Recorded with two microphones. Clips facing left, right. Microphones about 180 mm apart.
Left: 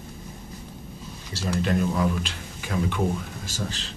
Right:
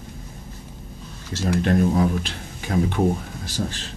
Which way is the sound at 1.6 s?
45° right (ahead or behind).